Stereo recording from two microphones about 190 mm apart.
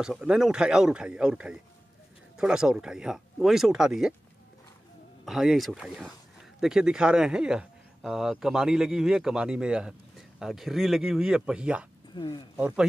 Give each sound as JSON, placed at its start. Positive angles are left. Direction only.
{"t": 0.0, "sound": "speech", "side_deg": -5}
{"t": 5.2, "sound": "speech", "side_deg": 0}
{"t": 12.2, "sound": "speech", "side_deg": 25}
{"t": 12.5, "sound": "speech", "side_deg": -5}